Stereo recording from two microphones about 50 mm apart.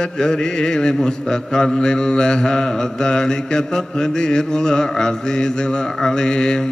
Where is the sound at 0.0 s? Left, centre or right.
Centre.